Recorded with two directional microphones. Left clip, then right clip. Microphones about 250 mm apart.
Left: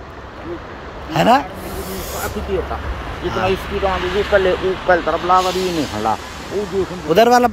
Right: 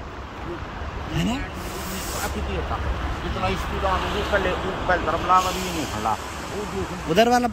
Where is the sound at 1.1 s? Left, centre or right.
Left.